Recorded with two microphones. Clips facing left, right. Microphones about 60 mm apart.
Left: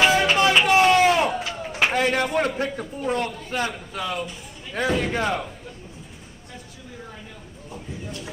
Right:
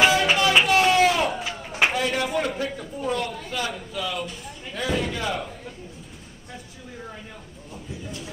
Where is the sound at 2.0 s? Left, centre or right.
Left.